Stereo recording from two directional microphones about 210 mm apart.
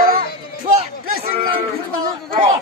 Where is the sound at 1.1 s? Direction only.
45° right (ahead or behind).